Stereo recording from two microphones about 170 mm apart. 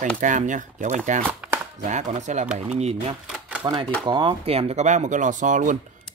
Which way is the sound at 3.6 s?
25° right (ahead or behind).